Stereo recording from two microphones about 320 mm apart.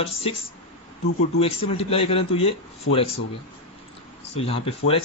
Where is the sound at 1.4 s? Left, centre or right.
Centre.